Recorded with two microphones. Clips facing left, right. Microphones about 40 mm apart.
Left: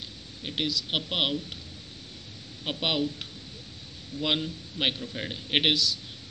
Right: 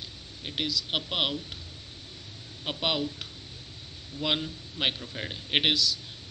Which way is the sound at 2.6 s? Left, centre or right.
Centre.